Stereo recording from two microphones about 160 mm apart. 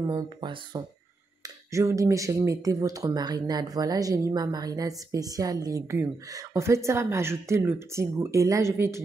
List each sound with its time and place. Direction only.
0.0 s speech: 20° right (ahead or behind)